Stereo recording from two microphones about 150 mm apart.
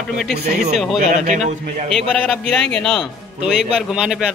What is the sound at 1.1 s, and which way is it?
Speech, 50° right (ahead or behind).